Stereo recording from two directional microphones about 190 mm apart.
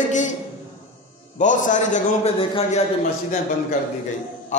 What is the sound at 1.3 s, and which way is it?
A man's voice, 40° left (ahead or behind).